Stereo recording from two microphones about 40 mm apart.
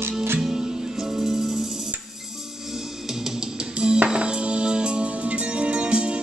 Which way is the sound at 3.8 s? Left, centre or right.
Right.